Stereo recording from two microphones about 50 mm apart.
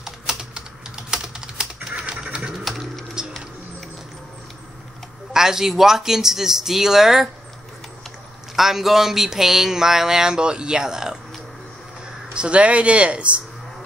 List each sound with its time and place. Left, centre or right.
0.0 s typing: centre
2.6 s a sound: centre
5.3 s speech: centre
8.5 s speech: centre
12.4 s speech: right